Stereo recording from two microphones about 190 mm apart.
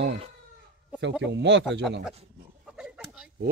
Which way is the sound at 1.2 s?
70° right (ahead or behind).